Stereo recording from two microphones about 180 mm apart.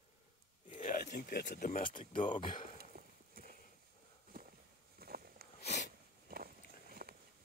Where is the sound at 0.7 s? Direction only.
40° left (ahead or behind); by 1.7 s 65° left (ahead or behind).